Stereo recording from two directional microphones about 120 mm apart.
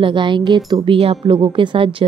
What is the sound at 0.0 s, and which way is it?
A woman's voice, 40° right (ahead or behind).